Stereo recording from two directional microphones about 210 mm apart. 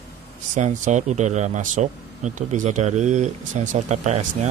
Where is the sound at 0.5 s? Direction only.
35° right (ahead or behind).